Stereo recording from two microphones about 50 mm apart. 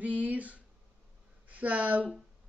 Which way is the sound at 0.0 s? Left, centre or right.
Right.